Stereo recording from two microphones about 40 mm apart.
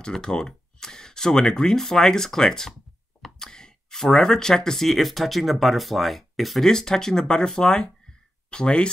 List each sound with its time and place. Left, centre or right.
0.1 s speech: centre
6.7 s speech: centre